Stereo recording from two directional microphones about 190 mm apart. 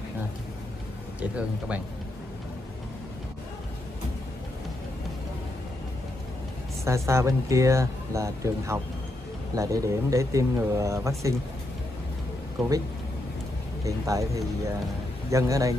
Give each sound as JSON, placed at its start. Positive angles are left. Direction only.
{"t": 1.2, "sound": "speech", "side_deg": -5}
{"t": 6.8, "sound": "speech", "side_deg": -15}
{"t": 12.5, "sound": "speech", "side_deg": -20}
{"t": 13.8, "sound": "speech", "side_deg": -15}